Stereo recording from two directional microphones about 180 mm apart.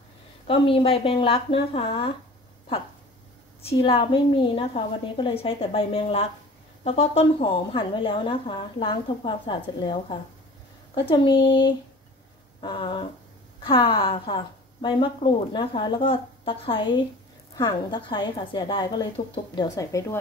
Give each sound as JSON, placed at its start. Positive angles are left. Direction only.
{"t": 0.5, "sound": "a woman's voice", "side_deg": 30}
{"t": 3.6, "sound": "a woman's voice", "side_deg": 30}
{"t": 12.5, "sound": "a sound", "side_deg": 25}
{"t": 13.6, "sound": "a woman's voice", "side_deg": 30}